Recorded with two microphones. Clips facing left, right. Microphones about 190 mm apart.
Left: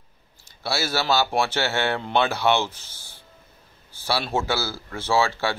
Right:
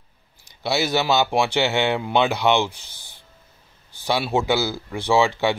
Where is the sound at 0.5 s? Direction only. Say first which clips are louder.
Right 5 dB; 20° right (ahead or behind).